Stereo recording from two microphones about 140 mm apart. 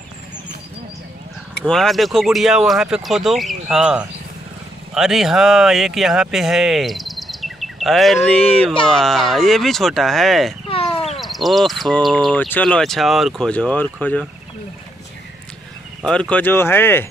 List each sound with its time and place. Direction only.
1.6 s speech: centre (ahead or behind)
10.7 s a sound: 45° left (ahead or behind)
11.1 s speech: centre (ahead or behind)
12.4 s speech: 10° left (ahead or behind)
16.1 s speech: 10° left (ahead or behind)